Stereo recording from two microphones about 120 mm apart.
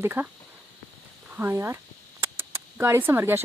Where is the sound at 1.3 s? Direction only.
20° right (ahead or behind).